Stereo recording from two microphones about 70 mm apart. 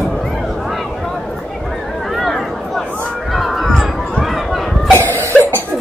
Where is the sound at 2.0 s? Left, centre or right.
Centre.